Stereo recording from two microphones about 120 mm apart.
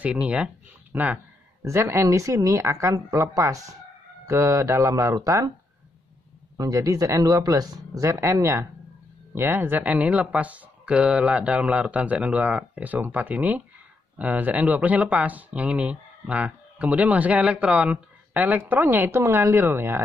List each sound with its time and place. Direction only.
0.0 s speech: 10° right (ahead or behind); by 5.5 s 30° right (ahead or behind)
6.5 s speech: 30° right (ahead or behind)